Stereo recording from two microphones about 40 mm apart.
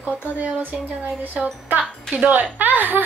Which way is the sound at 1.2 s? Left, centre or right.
Right.